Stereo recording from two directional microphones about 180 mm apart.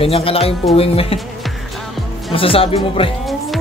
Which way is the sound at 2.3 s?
30° left (ahead or behind).